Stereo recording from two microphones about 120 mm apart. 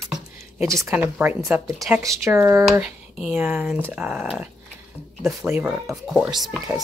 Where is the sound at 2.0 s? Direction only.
25° right (ahead or behind).